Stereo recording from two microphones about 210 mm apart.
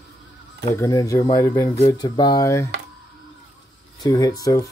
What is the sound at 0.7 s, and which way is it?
Speech, 15° left (ahead or behind).